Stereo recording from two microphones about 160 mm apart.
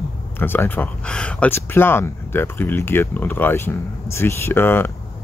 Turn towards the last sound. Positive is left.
turn(degrees=15)  # may be behind; listen again after turning